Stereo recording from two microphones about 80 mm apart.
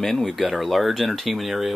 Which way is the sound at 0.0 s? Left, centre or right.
Centre.